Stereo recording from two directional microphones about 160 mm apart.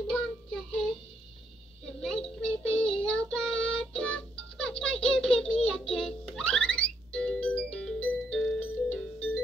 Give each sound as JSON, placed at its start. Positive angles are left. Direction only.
{"t": 0.0, "sound": "child singing", "side_deg": 5}
{"t": 2.0, "sound": "a sound", "side_deg": 5}
{"t": 2.8, "sound": "music", "side_deg": 5}